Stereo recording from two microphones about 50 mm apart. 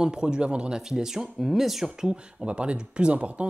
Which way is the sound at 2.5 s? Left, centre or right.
Right.